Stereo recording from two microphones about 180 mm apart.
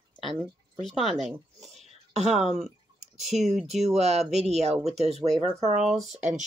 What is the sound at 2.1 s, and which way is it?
Speech, 40° right (ahead or behind).